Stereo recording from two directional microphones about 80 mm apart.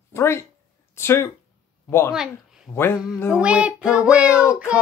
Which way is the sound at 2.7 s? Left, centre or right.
Centre.